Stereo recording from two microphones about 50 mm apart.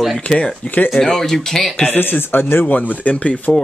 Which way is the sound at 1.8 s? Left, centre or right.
Left.